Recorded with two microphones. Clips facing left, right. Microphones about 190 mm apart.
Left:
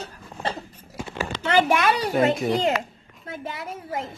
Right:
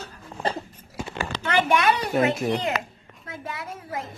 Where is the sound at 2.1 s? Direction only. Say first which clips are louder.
Left 2 dB; centre (ahead or behind).